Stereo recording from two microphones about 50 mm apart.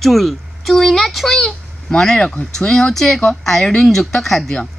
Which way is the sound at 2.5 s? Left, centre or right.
Centre.